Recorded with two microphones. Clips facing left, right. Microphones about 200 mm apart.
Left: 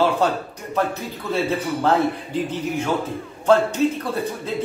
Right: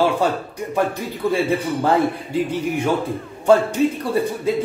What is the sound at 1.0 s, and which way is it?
A man's voice, 10° right (ahead or behind).